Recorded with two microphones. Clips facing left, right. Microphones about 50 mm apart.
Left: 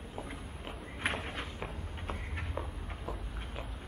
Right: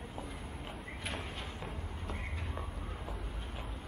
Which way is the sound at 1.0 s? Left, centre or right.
Left.